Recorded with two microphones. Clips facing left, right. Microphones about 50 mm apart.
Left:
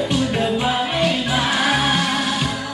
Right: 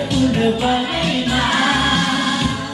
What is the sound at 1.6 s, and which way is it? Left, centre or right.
Music, centre.